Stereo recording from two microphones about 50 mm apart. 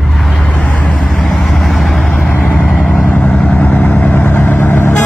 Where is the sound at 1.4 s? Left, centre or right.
Centre.